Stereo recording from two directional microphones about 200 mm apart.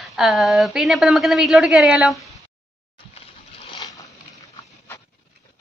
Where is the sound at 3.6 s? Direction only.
25° left (ahead or behind).